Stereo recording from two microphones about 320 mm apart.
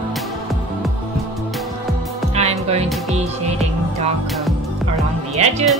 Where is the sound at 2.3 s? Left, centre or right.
Centre.